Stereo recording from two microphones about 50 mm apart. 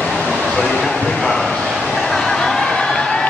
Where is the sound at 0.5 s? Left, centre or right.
Centre.